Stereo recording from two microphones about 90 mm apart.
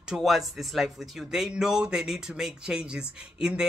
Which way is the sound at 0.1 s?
Centre (ahead or behind).